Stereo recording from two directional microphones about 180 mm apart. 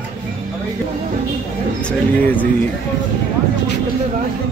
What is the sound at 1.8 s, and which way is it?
Speech, 10° left (ahead or behind).